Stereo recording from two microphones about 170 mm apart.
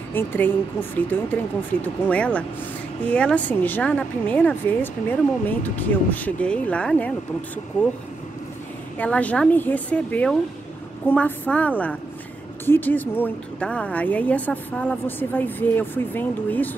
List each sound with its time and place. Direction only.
0.1 s a woman's voice: 10° left (ahead or behind)
8.9 s a woman's voice: 10° left (ahead or behind)